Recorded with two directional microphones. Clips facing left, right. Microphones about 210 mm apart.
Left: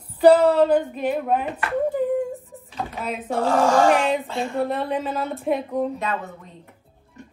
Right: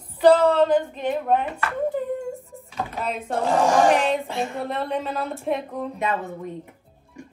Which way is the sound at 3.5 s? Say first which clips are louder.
Left 1 dB; 15° right (ahead or behind).